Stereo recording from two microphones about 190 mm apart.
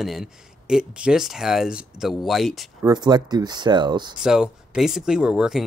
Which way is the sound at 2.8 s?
20° right (ahead or behind).